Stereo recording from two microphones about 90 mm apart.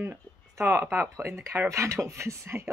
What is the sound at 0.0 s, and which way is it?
Speech, 30° right (ahead or behind).